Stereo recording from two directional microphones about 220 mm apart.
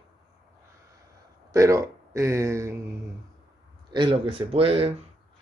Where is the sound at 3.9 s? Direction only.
20° right (ahead or behind).